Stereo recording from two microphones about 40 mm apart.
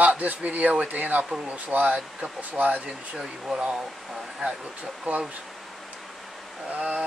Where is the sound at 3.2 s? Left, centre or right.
Right.